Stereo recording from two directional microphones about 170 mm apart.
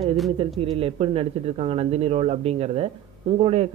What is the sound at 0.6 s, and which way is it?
Speech, 35° right (ahead or behind).